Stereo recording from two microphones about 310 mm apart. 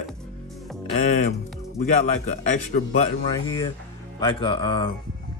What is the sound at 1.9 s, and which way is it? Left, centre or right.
A man's voice, left.